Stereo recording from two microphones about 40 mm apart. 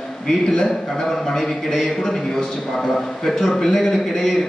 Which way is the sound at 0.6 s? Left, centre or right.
Centre.